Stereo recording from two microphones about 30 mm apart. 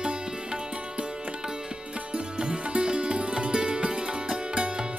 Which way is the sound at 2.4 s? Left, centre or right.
Right.